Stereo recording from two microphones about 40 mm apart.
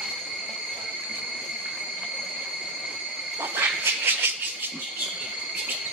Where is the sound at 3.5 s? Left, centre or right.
Right.